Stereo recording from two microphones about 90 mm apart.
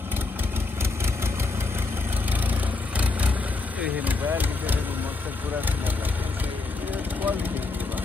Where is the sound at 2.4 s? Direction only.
15° right (ahead or behind).